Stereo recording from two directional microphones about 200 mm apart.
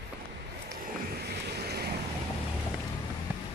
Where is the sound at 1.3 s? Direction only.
55° right (ahead or behind).